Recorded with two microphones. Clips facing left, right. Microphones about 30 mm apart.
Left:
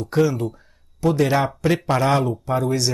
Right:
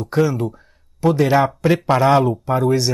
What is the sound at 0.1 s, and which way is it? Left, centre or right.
Speech, centre.